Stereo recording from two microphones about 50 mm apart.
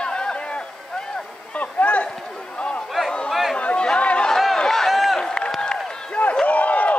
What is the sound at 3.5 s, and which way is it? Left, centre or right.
Chatter, left.